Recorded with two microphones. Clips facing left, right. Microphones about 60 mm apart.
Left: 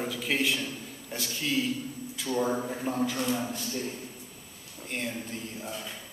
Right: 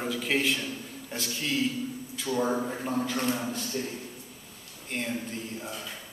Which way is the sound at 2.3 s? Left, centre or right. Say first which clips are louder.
Right 1 dB; centre.